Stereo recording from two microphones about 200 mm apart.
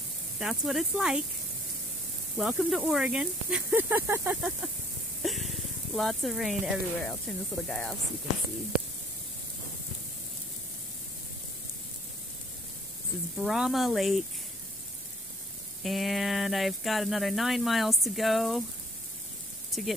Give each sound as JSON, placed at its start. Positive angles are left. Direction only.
{"t": 0.4, "sound": "speech", "side_deg": 0}
{"t": 2.3, "sound": "speech", "side_deg": -5}
{"t": 5.2, "sound": "a sound", "side_deg": 0}
{"t": 5.9, "sound": "speech", "side_deg": 0}
{"t": 13.4, "sound": "speech", "side_deg": 0}
{"t": 15.8, "sound": "speech", "side_deg": 0}
{"t": 19.7, "sound": "speech", "side_deg": 0}